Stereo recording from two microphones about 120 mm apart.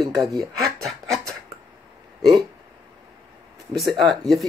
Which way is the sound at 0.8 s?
5° left (ahead or behind).